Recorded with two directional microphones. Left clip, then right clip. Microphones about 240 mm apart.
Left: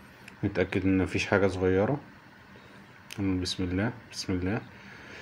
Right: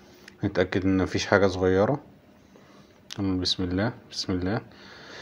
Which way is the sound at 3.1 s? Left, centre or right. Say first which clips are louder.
Right 4 dB; centre.